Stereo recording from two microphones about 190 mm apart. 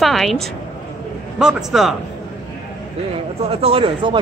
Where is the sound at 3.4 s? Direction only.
30° right (ahead or behind).